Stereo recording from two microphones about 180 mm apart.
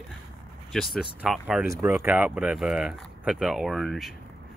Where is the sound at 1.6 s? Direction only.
15° right (ahead or behind); by 4.1 s centre (ahead or behind).